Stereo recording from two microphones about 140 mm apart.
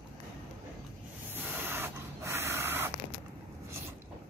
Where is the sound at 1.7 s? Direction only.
15° right (ahead or behind).